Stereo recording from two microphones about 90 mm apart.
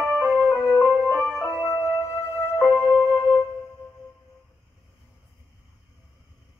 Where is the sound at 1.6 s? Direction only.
35° left (ahead or behind).